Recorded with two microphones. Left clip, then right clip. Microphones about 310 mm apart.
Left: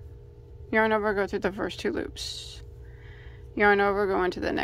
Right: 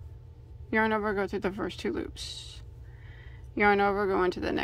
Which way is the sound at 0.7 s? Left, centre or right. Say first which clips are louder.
Left 3 dB; centre.